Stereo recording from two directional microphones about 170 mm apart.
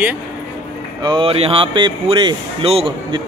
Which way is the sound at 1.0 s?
30° right (ahead or behind).